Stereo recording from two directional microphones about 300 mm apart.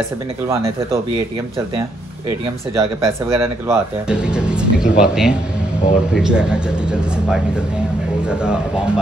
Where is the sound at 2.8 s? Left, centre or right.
Centre.